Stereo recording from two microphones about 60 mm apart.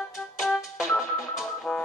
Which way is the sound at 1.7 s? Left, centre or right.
Centre.